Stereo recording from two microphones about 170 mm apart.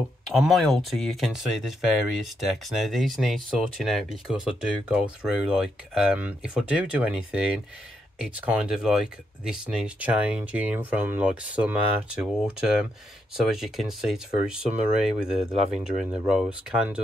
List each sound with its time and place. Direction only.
0.3 s speech: centre (ahead or behind)